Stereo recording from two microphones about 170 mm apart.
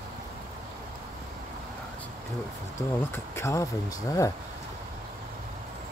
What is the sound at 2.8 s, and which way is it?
Speech, 15° left (ahead or behind).